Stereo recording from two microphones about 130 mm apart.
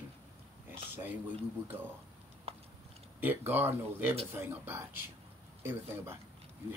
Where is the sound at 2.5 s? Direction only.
50° right (ahead or behind).